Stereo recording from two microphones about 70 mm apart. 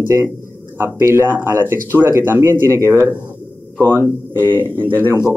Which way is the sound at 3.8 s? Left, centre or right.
Right.